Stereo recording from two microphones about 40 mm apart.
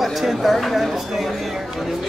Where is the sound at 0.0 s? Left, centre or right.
Centre.